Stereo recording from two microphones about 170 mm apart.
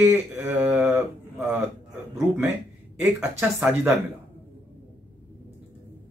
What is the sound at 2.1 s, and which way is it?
Speech, 10° right (ahead or behind).